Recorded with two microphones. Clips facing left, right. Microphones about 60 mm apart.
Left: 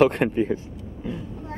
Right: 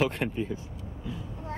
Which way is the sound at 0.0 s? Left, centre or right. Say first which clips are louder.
Left 9 dB; left.